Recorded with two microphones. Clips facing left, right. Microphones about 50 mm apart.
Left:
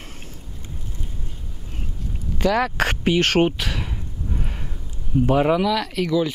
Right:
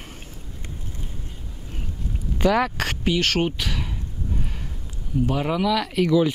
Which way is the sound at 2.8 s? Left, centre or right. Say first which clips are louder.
Left 4 dB; left.